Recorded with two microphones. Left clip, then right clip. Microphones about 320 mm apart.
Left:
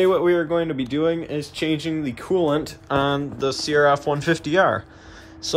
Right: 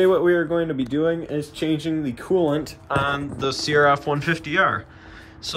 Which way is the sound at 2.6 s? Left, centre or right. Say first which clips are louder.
Left 1 dB; left.